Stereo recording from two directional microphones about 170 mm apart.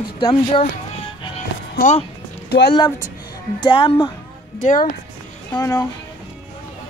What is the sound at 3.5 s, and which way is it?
Speech, 30° left (ahead or behind).